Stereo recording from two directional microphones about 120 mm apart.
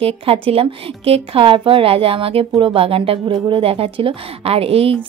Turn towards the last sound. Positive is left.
turn(degrees=-50)  # may be behind; listen again after turning